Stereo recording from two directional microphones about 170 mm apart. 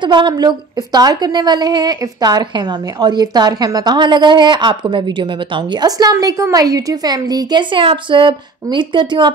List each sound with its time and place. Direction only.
0.0 s a woman's voice: 25° right (ahead or behind)